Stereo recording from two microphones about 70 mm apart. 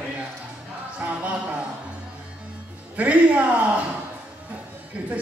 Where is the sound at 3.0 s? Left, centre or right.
Centre.